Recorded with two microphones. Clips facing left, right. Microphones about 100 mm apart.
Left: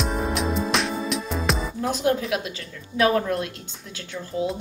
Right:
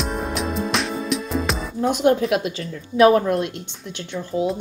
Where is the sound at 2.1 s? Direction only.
35° right (ahead or behind).